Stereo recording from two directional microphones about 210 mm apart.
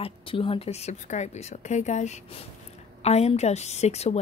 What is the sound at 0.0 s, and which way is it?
A woman's voice, 25° left (ahead or behind).